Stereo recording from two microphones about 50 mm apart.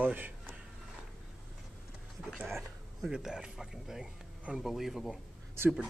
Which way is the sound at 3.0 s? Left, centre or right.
Centre.